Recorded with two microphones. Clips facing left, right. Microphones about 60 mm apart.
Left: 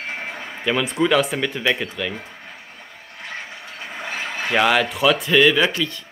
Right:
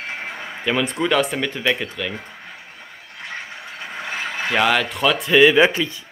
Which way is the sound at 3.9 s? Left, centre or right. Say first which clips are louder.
Right 1 dB; centre.